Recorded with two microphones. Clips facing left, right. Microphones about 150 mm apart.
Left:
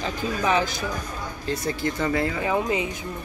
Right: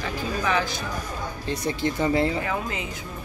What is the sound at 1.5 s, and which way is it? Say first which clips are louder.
Speech: even; 20° right (ahead or behind).